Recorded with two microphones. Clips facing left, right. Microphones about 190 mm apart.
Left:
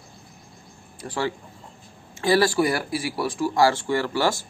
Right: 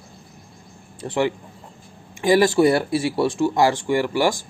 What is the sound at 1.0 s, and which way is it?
Speech, 20° right (ahead or behind).